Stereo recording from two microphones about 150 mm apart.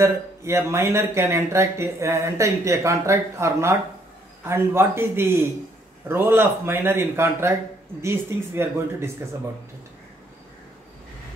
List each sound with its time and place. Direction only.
0.0 s speech: 20° right (ahead or behind)